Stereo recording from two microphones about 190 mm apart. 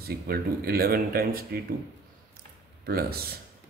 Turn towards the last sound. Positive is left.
turn(degrees=-55)  # may be behind; listen again after turning